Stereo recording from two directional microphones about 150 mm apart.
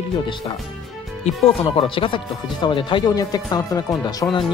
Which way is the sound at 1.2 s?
35° left (ahead or behind).